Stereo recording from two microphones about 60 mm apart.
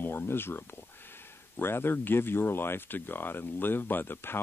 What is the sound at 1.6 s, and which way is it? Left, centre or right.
Speech, left.